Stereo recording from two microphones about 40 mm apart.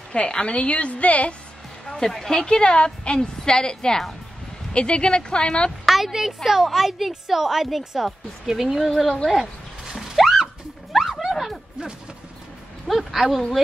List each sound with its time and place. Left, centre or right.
0.1 s a woman's voice: left
1.9 s a woman's voice: centre
5.9 s a sound: centre
6.1 s a woman's voice: centre
9.3 s a sound: centre
12.8 s speech: centre